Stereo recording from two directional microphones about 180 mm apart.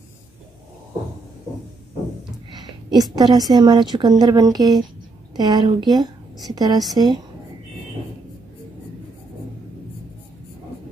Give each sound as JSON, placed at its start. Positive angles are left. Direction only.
{"t": 2.5, "sound": "a woman's voice", "side_deg": -25}